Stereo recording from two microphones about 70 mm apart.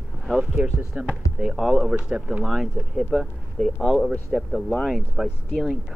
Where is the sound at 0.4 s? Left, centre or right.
Centre.